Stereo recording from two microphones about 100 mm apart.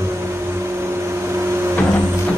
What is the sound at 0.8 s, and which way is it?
Microwave oven, 25° right (ahead or behind).